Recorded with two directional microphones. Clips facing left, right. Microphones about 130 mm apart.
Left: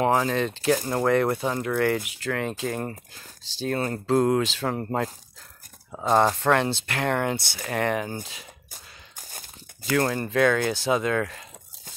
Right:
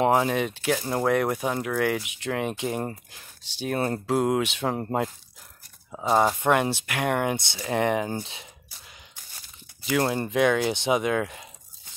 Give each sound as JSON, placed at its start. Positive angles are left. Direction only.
{"t": 0.0, "sound": "speech", "side_deg": -15}
{"t": 5.9, "sound": "speech", "side_deg": 0}
{"t": 9.9, "sound": "speech", "side_deg": -15}